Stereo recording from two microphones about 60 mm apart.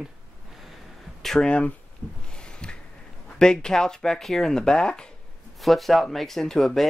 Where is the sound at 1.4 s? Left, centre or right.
Left.